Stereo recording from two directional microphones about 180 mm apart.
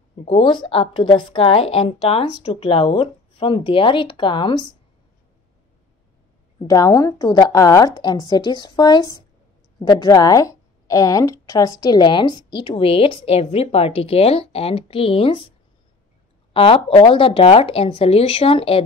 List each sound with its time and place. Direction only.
0.2 s a woman's voice: 30° left (ahead or behind)
6.6 s a woman's voice: 20° left (ahead or behind)
16.5 s a woman's voice: 30° left (ahead or behind)